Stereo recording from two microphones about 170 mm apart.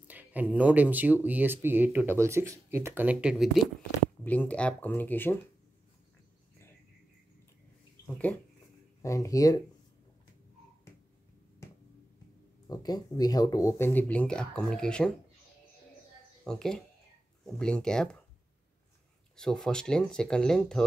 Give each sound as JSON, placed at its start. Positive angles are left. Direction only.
{"t": 0.1, "sound": "speech", "side_deg": -10}
{"t": 4.2, "sound": "speech", "side_deg": 10}
{"t": 9.0, "sound": "speech", "side_deg": 20}
{"t": 12.6, "sound": "speech", "side_deg": 25}
{"t": 16.4, "sound": "speech", "side_deg": 5}
{"t": 19.3, "sound": "speech", "side_deg": 5}